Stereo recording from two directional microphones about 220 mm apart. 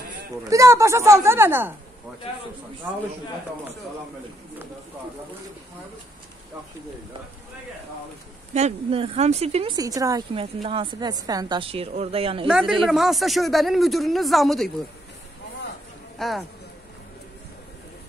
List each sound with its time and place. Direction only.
0.5 s speech: 15° right (ahead or behind)
8.5 s speech: 30° right (ahead or behind)
12.4 s speech: centre (ahead or behind)
16.2 s speech: centre (ahead or behind)